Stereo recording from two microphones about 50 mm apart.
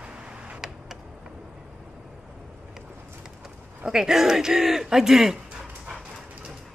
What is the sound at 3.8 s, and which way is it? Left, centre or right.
Speech, centre.